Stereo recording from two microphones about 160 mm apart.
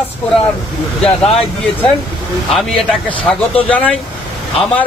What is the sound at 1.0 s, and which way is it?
Speech, 35° left (ahead or behind).